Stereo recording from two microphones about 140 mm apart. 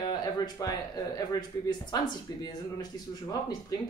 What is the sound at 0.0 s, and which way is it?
Speech, 30° left (ahead or behind).